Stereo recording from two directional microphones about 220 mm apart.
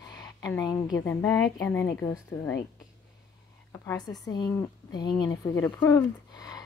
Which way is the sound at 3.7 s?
15° left (ahead or behind).